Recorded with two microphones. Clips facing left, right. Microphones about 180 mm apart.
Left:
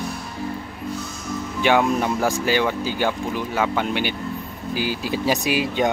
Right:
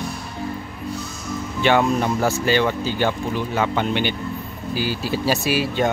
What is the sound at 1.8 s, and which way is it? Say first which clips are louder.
Speech: right 1 dB; 10° left (ahead or behind).